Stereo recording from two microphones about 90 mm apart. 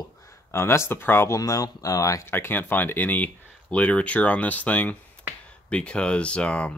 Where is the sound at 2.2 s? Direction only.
25° left (ahead or behind).